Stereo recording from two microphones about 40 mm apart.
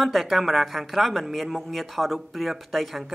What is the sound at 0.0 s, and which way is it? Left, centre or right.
Speech, centre.